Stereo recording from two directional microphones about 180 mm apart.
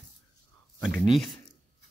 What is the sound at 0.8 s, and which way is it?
Speech, centre (ahead or behind).